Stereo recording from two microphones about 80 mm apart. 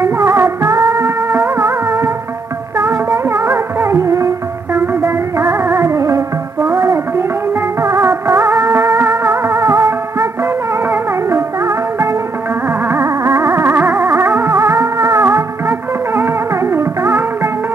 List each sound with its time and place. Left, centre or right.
0.0 s music: right
3.1 s music: right